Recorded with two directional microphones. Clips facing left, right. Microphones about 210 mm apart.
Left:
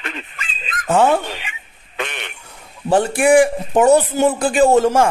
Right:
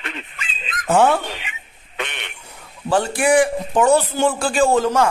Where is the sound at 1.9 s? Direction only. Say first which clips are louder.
Left 3 dB; 40° left (ahead or behind).